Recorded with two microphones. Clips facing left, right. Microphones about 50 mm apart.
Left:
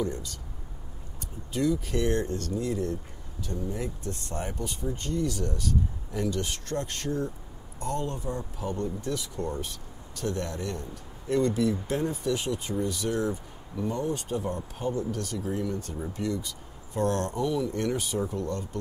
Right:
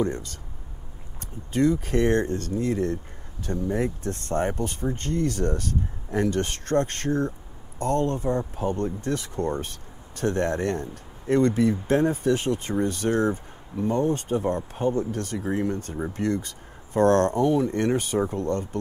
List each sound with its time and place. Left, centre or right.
0.0 s speech: right
1.5 s speech: right